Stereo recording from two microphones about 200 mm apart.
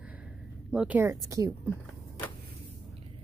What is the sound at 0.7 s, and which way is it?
Speech, 5° right (ahead or behind).